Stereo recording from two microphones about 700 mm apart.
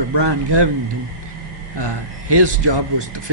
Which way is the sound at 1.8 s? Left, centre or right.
Right.